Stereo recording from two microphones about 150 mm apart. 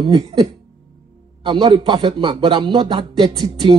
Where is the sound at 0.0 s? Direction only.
40° right (ahead or behind).